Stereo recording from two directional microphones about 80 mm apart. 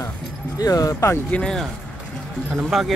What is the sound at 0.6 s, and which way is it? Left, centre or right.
Speech, left.